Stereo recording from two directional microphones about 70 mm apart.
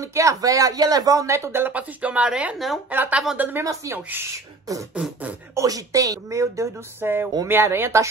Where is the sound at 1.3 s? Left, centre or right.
Right.